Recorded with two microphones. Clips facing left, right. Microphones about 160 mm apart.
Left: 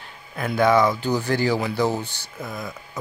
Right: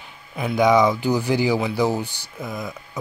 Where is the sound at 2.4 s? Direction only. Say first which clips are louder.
Right 2 dB; centre (ahead or behind).